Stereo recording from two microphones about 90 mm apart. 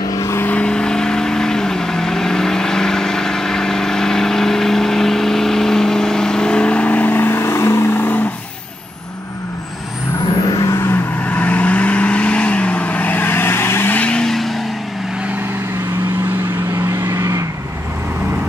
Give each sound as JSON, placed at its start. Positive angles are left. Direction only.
{"t": 0.1, "sound": "vehicle", "side_deg": 35}
{"t": 0.5, "sound": "vehicle", "side_deg": 10}
{"t": 10.6, "sound": "vehicle", "side_deg": 40}
{"t": 10.9, "sound": "vehicle", "side_deg": 15}
{"t": 14.0, "sound": "vehicle", "side_deg": 10}
{"t": 16.7, "sound": "vehicle", "side_deg": -35}